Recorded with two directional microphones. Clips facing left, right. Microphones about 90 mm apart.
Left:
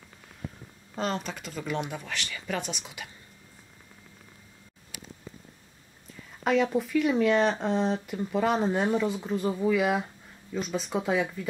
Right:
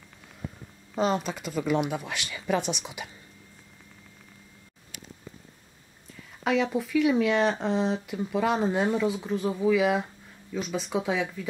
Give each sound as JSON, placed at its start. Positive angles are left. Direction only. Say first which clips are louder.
{"t": 0.9, "sound": "speech", "louder": "right 5 dB", "side_deg": -15}
{"t": 6.4, "sound": "speech", "louder": "left 1 dB", "side_deg": 0}